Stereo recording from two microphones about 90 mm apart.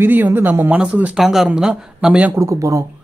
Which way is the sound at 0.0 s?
25° right (ahead or behind).